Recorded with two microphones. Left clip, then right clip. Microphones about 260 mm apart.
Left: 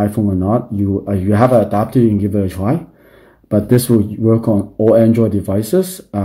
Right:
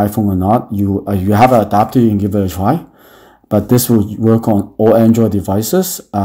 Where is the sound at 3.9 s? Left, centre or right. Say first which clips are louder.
Right 1 dB; centre.